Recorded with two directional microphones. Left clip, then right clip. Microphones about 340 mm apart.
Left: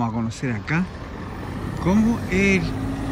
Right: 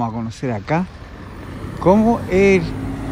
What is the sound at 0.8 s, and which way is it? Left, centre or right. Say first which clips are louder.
Vehicle: left 2 dB; left.